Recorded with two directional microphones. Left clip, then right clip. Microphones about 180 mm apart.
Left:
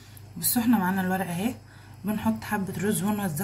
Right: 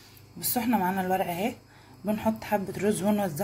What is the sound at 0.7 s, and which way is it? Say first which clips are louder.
Speech: even; 25° right (ahead or behind).